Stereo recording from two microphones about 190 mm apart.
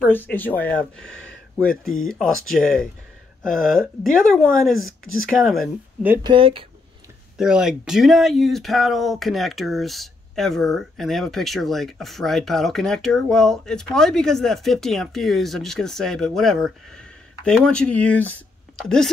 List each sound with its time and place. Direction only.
0.0 s speech: 10° left (ahead or behind)
6.2 s speech: 25° right (ahead or behind)
7.3 s speech: 5° right (ahead or behind)